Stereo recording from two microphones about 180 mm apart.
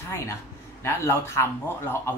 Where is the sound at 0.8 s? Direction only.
15° left (ahead or behind).